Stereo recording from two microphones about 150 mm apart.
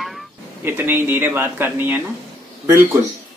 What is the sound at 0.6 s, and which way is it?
A man's voice, 15° right (ahead or behind).